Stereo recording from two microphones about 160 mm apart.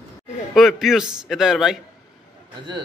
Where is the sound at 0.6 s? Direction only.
Centre (ahead or behind).